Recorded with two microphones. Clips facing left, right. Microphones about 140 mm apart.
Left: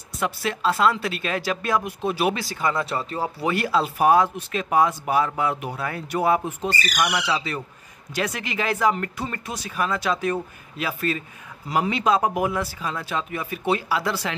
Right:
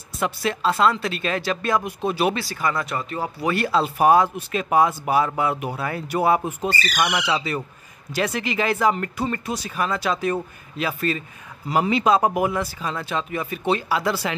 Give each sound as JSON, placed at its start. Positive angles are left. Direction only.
{"t": 0.2, "sound": "speech", "side_deg": 0}
{"t": 2.3, "sound": "speech", "side_deg": 20}
{"t": 3.4, "sound": "speech", "side_deg": 10}
{"t": 8.1, "sound": "speech", "side_deg": 0}